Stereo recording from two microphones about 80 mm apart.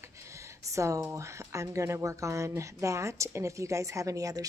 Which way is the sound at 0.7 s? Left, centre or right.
Right.